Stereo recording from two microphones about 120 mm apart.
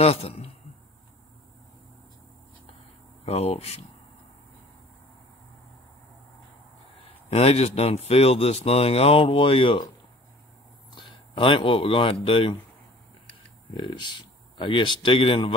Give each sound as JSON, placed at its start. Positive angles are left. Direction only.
{"t": 0.0, "sound": "a man's voice", "side_deg": 55}
{"t": 3.3, "sound": "speech", "side_deg": 60}
{"t": 7.2, "sound": "speech", "side_deg": 55}
{"t": 11.0, "sound": "speech", "side_deg": 45}
{"t": 13.7, "sound": "speech", "side_deg": 40}